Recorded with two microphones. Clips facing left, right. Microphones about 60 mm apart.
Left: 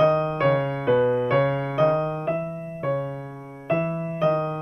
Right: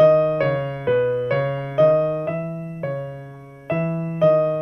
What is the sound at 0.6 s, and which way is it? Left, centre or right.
Music, centre.